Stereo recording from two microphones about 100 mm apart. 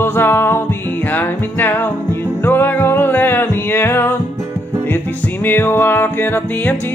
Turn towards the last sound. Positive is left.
turn(degrees=20)  # may be behind; listen again after turning